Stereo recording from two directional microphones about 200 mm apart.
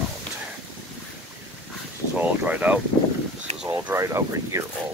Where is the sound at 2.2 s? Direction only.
5° right (ahead or behind).